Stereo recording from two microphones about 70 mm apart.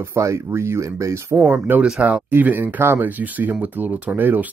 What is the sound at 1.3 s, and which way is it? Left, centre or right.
Speech, right.